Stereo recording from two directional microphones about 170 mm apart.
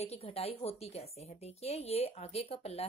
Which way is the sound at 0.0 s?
35° left (ahead or behind).